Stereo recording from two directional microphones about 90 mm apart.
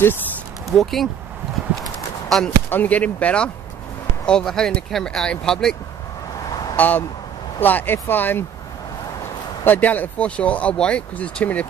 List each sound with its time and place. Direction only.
0.7 s speech: centre (ahead or behind)
2.2 s speech: centre (ahead or behind)
2.7 s speech: 15° left (ahead or behind)
6.8 s speech: 20° left (ahead or behind)
9.7 s speech: 20° left (ahead or behind)